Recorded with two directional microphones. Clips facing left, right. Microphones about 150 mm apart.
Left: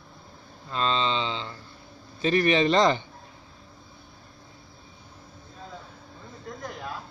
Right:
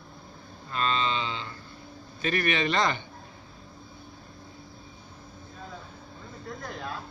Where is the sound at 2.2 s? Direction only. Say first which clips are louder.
Left 6 dB; 25° left (ahead or behind).